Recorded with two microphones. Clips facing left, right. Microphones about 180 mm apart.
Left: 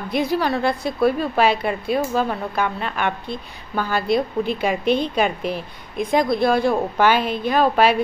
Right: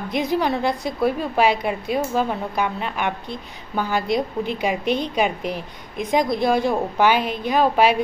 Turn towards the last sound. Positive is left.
turn(degrees=-15)  # may be behind; listen again after turning